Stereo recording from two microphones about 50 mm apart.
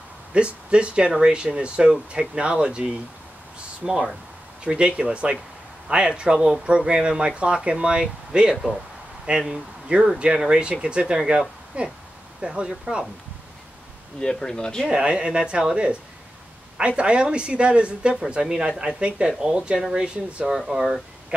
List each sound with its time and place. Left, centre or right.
0.3 s speech: right
14.2 s speech: centre
14.9 s speech: centre